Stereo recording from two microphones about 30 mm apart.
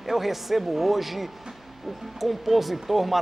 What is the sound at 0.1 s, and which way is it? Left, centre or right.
Speech, centre.